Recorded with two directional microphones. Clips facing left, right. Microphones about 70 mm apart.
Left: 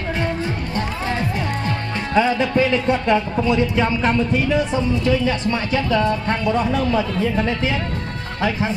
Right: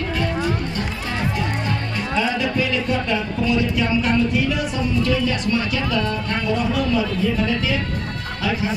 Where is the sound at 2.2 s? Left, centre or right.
Left.